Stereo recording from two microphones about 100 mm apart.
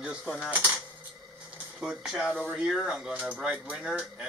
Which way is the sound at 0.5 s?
15° right (ahead or behind).